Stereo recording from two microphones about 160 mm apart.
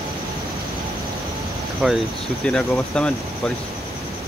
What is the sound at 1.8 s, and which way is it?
Cricket, 5° right (ahead or behind).